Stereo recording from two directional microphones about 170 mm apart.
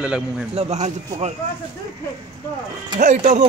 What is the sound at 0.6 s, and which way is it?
Speech, 40° right (ahead or behind).